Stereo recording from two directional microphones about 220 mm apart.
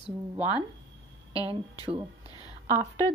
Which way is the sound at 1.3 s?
15° left (ahead or behind).